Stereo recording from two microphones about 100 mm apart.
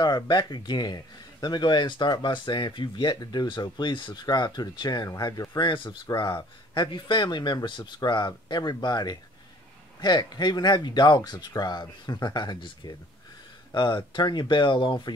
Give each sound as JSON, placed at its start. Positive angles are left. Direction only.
{"t": 0.0, "sound": "speech", "side_deg": 45}
{"t": 5.6, "sound": "speech", "side_deg": 50}